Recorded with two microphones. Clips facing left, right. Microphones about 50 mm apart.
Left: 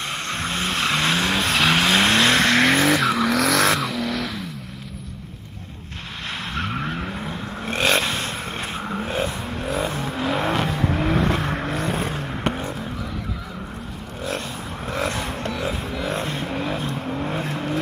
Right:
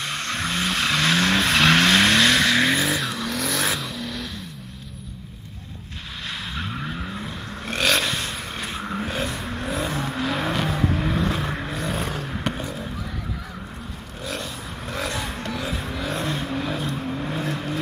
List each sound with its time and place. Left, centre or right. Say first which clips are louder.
0.0 s vehicle: even; left
1.3 s vehicle: right 2 dB; centre
2.0 s vehicle: even; left
2.5 s vehicle: left 3 dB; left
2.9 s vehicle: left 7 dB; left
6.5 s vehicle: left 7 dB; left
14.9 s vehicle: left 3 dB; left